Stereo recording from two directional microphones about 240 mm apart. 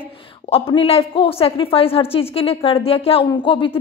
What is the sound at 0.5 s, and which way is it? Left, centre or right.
A woman's voice, left.